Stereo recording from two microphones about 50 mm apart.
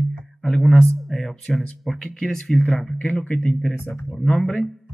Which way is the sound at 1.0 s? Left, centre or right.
Centre.